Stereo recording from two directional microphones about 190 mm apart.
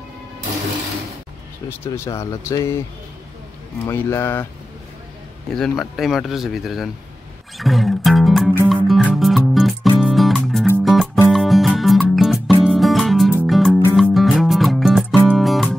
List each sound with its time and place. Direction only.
1.8 s speech: 15° left (ahead or behind)
3.8 s speech: 15° left (ahead or behind)
5.6 s speech: centre (ahead or behind)
7.5 s music: centre (ahead or behind)